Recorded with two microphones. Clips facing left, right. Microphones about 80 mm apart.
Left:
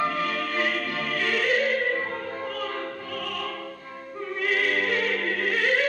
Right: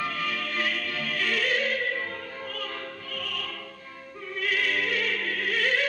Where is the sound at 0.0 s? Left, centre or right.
Left.